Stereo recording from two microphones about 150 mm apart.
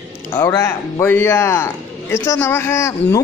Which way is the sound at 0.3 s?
20° left (ahead or behind).